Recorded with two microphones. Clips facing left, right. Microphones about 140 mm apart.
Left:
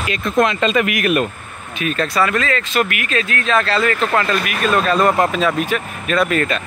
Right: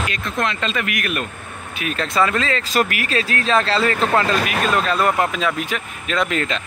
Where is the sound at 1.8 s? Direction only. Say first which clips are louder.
Left 5 dB; 15° right (ahead or behind).